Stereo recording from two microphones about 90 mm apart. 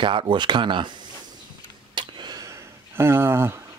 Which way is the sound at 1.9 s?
55° right (ahead or behind).